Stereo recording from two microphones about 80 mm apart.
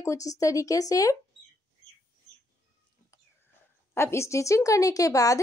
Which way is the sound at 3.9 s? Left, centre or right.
Left.